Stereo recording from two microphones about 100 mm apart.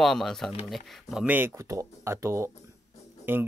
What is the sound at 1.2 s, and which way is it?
Speech, 20° right (ahead or behind).